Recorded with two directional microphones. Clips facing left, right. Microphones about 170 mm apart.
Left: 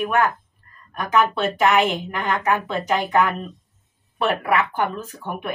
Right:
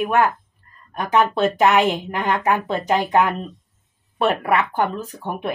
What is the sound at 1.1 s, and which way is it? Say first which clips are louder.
Speech: right 2 dB; 35° right (ahead or behind).